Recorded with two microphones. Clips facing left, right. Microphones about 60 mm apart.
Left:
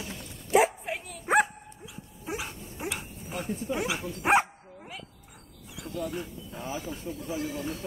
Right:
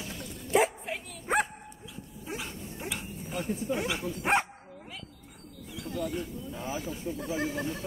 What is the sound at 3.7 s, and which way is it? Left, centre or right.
Speech, centre.